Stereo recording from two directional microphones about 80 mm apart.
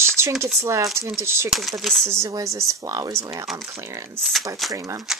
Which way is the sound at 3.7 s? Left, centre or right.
Right.